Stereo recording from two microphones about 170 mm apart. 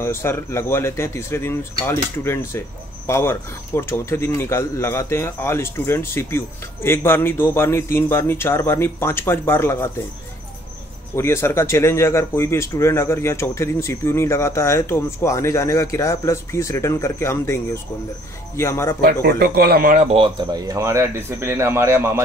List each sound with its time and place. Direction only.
0.0 s speech: 15° left (ahead or behind)
11.1 s speech: 15° left (ahead or behind)
18.6 s speech: 15° left (ahead or behind)
19.2 s speech: 65° right (ahead or behind)
20.1 s speech: 30° right (ahead or behind)